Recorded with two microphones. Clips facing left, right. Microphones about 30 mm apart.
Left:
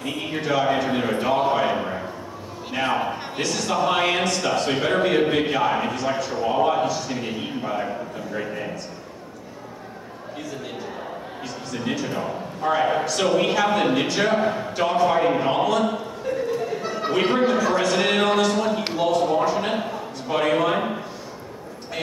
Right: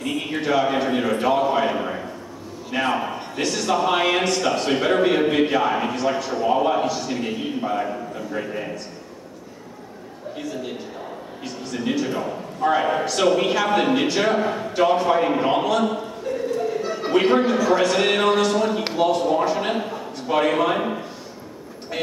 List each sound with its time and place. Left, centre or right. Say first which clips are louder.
0.0 s a man's voice: right 2 dB; centre
2.9 s a sound: even; centre
3.4 s speech: right 2 dB; centre
11.4 s a man's voice: right 3 dB; centre